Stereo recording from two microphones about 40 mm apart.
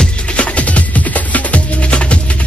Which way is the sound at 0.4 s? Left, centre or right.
Left.